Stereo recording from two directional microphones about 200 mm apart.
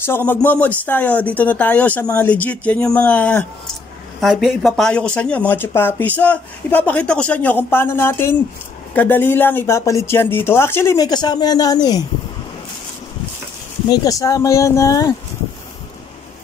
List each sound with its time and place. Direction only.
0.0 s speech: 10° left (ahead or behind)
13.8 s speech: 20° left (ahead or behind)